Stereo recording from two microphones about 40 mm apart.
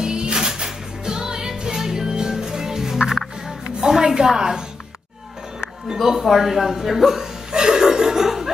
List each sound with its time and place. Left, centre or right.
0.0 s music: right
3.8 s a woman's voice: centre
5.9 s speech: centre
7.5 s chuckle: centre